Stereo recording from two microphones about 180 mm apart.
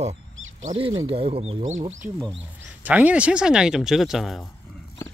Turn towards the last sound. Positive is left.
turn(degrees=0)  # may be behind; listen again after turning